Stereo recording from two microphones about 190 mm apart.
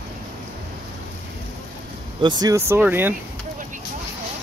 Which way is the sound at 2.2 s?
20° right (ahead or behind).